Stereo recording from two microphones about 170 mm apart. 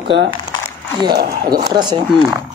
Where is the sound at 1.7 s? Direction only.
25° right (ahead or behind).